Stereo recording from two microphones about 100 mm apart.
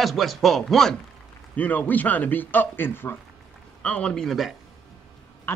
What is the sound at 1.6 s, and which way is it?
Speech, 15° left (ahead or behind).